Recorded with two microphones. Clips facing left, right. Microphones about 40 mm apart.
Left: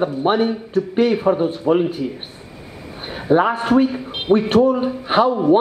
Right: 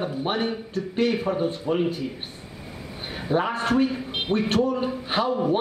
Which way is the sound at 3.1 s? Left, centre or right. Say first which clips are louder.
Left 8 dB; centre.